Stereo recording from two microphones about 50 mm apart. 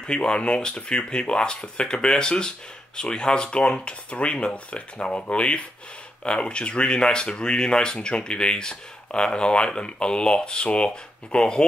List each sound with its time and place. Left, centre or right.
0.0 s speech: centre